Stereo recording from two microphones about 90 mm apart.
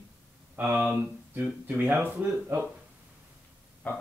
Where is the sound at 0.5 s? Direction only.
10° right (ahead or behind).